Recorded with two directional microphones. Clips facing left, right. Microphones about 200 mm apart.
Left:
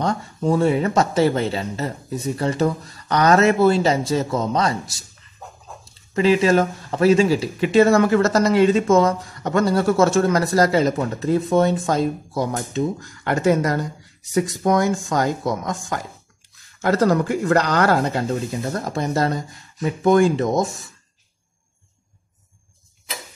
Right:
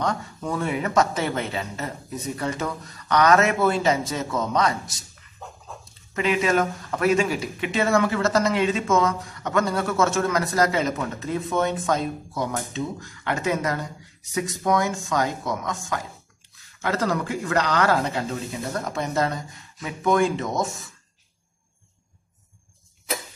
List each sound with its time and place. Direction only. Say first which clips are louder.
0.0 s speech: left 5 dB; 30° left (ahead or behind)
6.1 s speech: left 6 dB; 30° left (ahead or behind)